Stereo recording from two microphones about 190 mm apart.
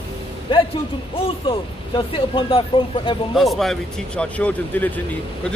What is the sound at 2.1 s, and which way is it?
Speech, 25° left (ahead or behind).